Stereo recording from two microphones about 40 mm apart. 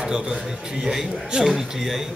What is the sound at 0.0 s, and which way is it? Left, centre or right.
A man's voice, centre.